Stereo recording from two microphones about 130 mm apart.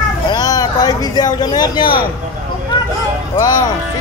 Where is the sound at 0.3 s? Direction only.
30° left (ahead or behind).